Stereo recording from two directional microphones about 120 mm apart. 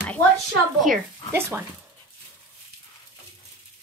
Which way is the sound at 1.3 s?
20° right (ahead or behind).